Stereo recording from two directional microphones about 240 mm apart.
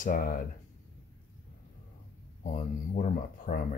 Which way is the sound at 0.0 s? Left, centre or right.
Left.